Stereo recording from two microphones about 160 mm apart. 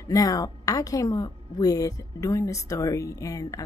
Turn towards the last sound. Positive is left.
turn(degrees=20)  # may be behind; listen again after turning